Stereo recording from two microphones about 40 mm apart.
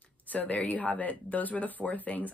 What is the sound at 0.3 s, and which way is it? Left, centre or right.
Speech, left.